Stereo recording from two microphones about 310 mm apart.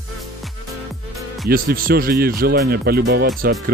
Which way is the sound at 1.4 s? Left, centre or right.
Right.